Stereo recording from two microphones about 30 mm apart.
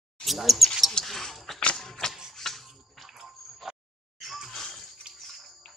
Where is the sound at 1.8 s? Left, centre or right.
Centre.